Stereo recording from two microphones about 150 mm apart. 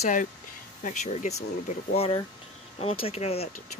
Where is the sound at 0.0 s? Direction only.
55° left (ahead or behind).